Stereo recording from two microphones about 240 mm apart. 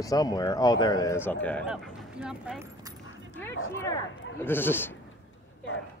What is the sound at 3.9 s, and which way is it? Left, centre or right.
Speech, centre.